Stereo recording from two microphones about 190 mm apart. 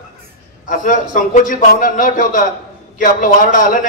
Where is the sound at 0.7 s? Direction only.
45° left (ahead or behind).